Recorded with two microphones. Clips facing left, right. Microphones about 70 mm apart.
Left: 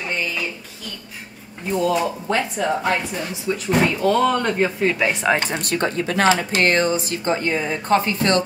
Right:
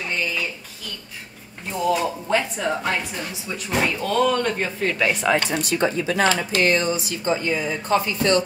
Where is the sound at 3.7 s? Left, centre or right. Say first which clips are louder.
Left 5 dB; centre.